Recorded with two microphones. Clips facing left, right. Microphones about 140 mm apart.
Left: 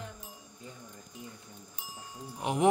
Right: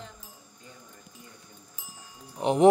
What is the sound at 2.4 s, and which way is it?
Speech, 30° right (ahead or behind).